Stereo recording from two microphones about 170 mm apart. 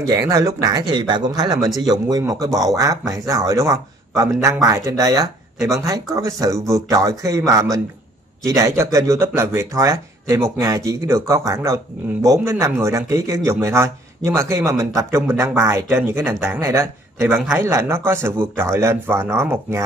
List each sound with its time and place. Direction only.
0.0 s speech: 20° right (ahead or behind)